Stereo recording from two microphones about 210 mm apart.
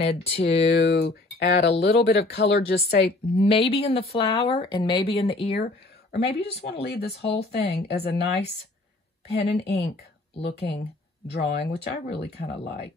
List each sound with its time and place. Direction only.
0.0 s speech: 30° left (ahead or behind)
0.7 s speech: 45° left (ahead or behind)
3.3 s speech: 30° left (ahead or behind)
6.1 s speech: 50° left (ahead or behind)
9.3 s speech: 50° left (ahead or behind)